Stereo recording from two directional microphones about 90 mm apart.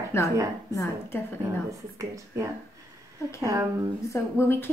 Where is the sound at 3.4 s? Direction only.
35° right (ahead or behind).